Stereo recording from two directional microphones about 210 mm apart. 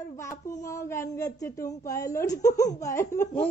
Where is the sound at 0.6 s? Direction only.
15° left (ahead or behind).